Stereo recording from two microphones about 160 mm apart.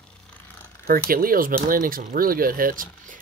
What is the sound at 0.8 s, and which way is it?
Speech, 65° right (ahead or behind).